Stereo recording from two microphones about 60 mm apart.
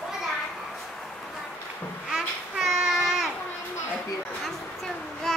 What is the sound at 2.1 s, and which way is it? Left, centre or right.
Babbling, centre.